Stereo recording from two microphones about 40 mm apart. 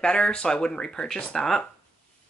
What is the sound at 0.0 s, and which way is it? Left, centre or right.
Speech, left.